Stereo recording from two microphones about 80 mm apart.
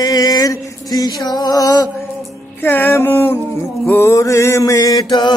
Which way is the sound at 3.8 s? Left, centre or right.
Left.